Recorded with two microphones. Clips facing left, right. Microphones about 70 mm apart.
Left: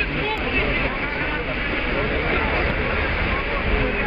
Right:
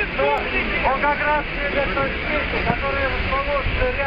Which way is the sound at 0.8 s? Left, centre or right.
Right.